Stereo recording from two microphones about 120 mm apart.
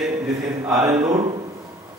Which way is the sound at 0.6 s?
25° right (ahead or behind).